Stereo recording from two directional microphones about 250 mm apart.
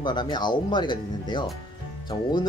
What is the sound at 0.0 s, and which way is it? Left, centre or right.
Speech, centre.